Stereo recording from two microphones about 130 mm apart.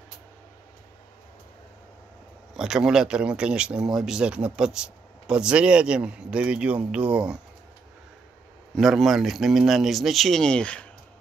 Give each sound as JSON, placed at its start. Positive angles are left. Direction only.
{"t": 2.5, "sound": "speech", "side_deg": -5}
{"t": 8.7, "sound": "speech", "side_deg": 0}